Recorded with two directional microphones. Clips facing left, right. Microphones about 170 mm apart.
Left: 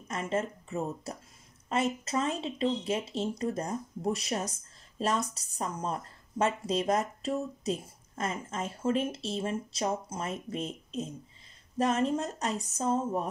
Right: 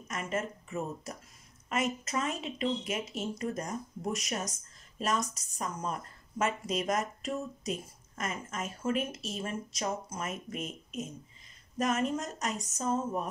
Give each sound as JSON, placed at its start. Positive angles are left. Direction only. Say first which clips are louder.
{"t": 0.1, "sound": "a woman's voice", "louder": "left 3 dB", "side_deg": 30}